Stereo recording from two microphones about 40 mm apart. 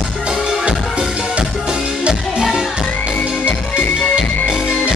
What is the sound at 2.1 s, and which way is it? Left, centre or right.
Music, centre.